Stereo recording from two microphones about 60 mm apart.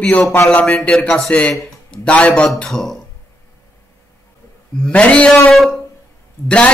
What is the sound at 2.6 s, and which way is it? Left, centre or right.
Speech, centre.